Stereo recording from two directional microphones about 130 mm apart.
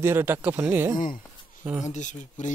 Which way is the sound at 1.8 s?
70° left (ahead or behind).